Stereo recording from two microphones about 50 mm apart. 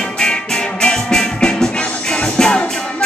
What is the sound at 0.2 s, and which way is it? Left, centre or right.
Music, centre.